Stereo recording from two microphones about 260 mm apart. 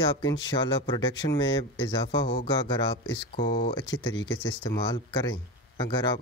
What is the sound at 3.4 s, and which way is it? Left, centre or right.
Speech, left.